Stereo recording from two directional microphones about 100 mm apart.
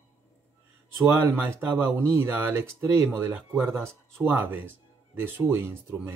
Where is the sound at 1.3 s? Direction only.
20° right (ahead or behind).